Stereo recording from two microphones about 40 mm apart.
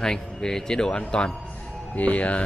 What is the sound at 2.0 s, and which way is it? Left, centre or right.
Speech, left.